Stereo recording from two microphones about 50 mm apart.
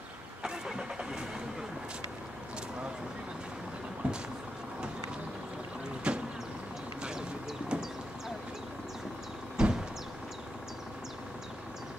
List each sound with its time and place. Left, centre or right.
0.4 s vehicle: centre
4.0 s vehicle: right
6.1 s vehicle: right
7.0 s a sound: centre
7.7 s vehicle: right
9.6 s vehicle: centre